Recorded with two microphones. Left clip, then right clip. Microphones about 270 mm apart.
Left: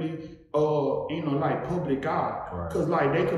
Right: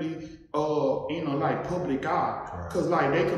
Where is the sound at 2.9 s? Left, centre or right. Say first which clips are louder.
Even; centre.